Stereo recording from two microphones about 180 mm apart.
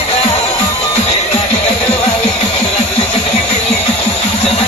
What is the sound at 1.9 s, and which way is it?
Music, 35° left (ahead or behind).